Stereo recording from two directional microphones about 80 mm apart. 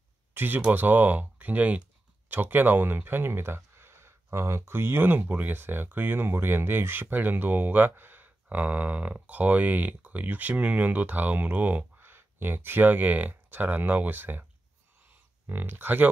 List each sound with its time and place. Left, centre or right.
0.3 s a sound: right
0.6 s speech: right
15.4 s speech: right